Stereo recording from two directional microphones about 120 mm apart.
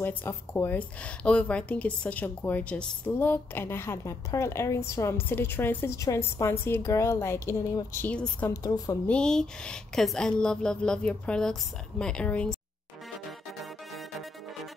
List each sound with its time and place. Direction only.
0.0 s a woman's voice: 20° left (ahead or behind)
8.1 s speech: 10° left (ahead or behind)
8.5 s a woman's voice: 30° left (ahead or behind)
9.0 s speech: 10° left (ahead or behind)